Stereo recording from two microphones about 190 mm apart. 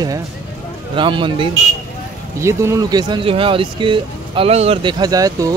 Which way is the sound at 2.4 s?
15° right (ahead or behind).